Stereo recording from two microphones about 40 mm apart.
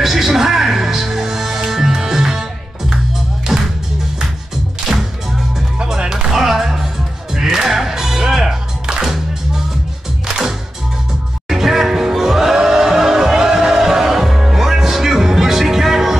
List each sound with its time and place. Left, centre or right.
0.0 s music: centre
3.5 s music: centre
5.8 s music: centre
6.3 s music: centre
10.2 s music: centre